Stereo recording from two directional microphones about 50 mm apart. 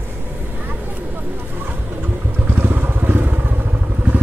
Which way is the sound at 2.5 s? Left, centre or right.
Right.